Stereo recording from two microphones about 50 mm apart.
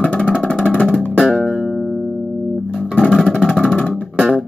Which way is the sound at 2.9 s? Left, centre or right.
Left.